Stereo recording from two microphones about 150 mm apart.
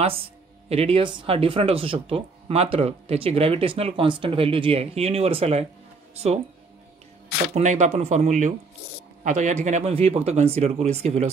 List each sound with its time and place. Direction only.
0.0 s speech: 40° right (ahead or behind)
7.5 s speech: 50° right (ahead or behind)